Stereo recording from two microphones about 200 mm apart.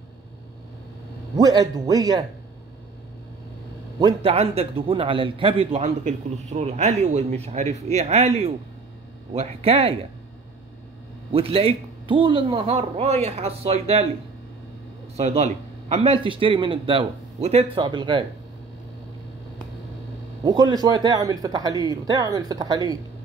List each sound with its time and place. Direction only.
1.3 s a man's voice: 20° right (ahead or behind)
4.0 s a man's voice: 30° right (ahead or behind)
11.3 s a man's voice: 30° right (ahead or behind)
15.1 s a man's voice: 35° right (ahead or behind)
20.4 s a man's voice: 20° right (ahead or behind)